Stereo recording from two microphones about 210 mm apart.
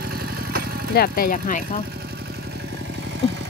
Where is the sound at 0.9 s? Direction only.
45° left (ahead or behind).